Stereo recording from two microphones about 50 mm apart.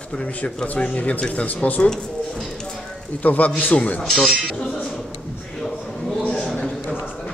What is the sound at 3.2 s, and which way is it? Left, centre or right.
Speech, left.